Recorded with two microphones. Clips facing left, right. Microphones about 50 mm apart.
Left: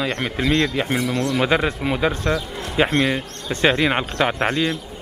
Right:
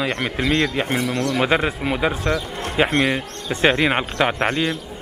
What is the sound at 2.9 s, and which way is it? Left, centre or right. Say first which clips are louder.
Speech: even; right.